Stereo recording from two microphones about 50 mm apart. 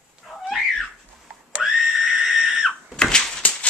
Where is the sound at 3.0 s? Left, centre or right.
Centre.